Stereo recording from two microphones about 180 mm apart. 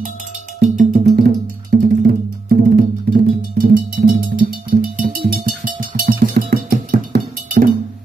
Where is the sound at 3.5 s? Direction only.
55° right (ahead or behind).